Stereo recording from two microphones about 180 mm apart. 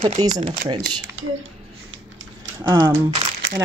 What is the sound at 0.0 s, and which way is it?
Speech, 30° right (ahead or behind).